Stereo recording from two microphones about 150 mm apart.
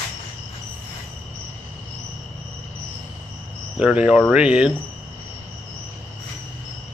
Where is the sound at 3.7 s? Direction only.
5° right (ahead or behind).